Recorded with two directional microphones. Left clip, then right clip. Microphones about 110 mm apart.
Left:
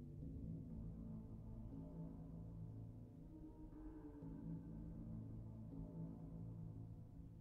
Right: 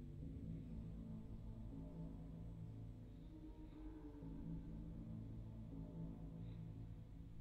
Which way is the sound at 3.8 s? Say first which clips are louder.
Even; centre (ahead or behind).